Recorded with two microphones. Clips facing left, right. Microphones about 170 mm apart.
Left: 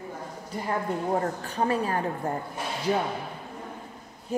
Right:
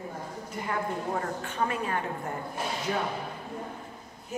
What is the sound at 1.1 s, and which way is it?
Speech, 35° left (ahead or behind).